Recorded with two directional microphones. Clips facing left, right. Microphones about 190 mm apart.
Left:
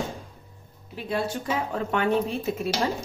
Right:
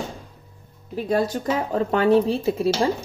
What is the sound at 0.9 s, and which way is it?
Speech, 40° right (ahead or behind).